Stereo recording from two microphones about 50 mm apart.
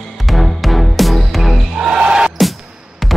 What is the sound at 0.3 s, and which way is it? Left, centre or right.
Music, centre.